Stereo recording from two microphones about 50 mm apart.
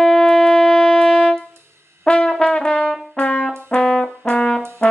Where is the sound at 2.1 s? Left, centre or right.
Centre.